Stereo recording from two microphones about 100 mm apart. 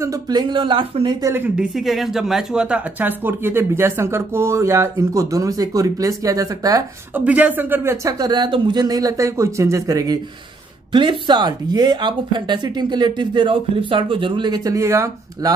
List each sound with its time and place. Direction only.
0.3 s speech: 45° right (ahead or behind)
0.6 s speech: 60° right (ahead or behind)
1.6 s speech: 5° right (ahead or behind); by 6.8 s 35° right (ahead or behind)
7.2 s speech: 15° right (ahead or behind)
8.2 s speech: 45° right (ahead or behind)
10.9 s speech: 50° right (ahead or behind); by 15.5 s 30° right (ahead or behind)